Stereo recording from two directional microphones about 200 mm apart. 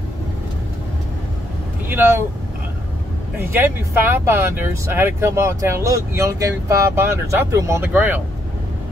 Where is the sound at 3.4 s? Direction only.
10° right (ahead or behind).